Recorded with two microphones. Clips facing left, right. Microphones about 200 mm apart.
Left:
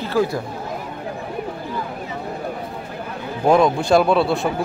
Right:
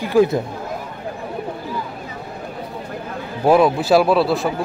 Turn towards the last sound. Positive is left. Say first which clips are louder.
# right 1 dB
turn(degrees=0)  # may be behind; listen again after turning